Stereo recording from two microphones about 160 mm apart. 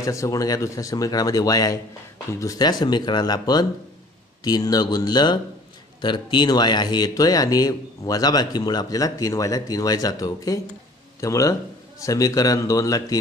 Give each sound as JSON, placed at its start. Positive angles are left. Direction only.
{"t": 0.0, "sound": "speech", "side_deg": 20}